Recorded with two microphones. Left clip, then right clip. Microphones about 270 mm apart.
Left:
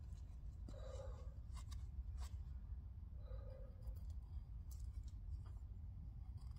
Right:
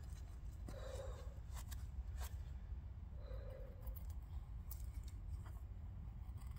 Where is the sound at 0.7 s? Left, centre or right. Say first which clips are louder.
Right 4 dB; centre.